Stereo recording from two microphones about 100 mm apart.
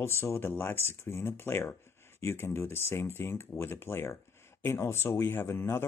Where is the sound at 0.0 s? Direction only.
25° left (ahead or behind).